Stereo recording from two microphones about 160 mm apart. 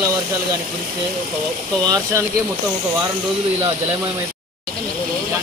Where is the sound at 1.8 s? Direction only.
20° right (ahead or behind).